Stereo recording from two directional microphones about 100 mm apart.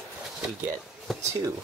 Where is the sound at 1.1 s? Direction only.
Centre (ahead or behind).